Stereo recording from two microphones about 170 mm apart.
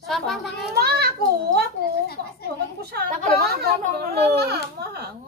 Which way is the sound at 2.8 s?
65° right (ahead or behind).